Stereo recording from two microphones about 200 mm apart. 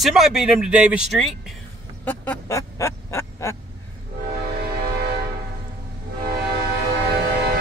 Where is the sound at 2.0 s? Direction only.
10° left (ahead or behind).